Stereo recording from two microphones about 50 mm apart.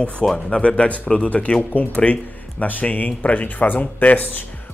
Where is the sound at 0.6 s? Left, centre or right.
Left.